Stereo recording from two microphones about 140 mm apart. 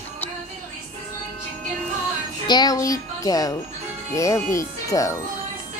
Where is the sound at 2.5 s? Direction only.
30° left (ahead or behind).